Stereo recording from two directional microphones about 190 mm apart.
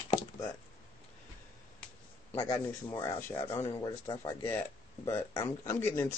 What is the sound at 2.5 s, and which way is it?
A man's voice, 15° left (ahead or behind).